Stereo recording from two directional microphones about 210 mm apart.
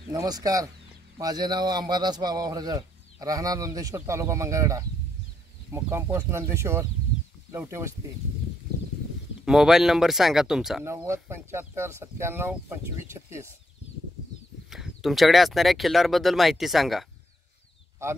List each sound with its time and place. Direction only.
0.1 s a man's voice: 15° right (ahead or behind)
9.4 s a man's voice: centre (ahead or behind)
14.7 s speech: centre (ahead or behind)